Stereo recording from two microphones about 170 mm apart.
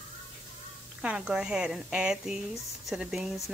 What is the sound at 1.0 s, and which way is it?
A woman's voice, 5° right (ahead or behind).